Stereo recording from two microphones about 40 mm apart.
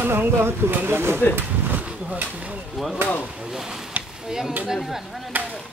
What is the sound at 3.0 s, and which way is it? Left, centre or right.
Speech, right.